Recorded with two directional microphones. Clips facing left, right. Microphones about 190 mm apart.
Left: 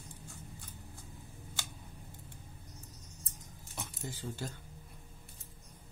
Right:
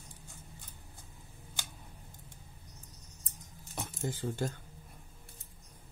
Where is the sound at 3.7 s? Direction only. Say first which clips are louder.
Right 6 dB; 50° right (ahead or behind).